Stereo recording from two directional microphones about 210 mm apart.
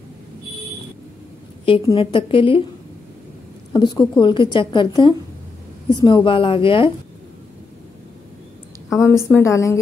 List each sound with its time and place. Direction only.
1.7 s a woman's voice: 25° left (ahead or behind)
3.7 s a woman's voice: 20° left (ahead or behind)
8.9 s a woman's voice: 10° left (ahead or behind)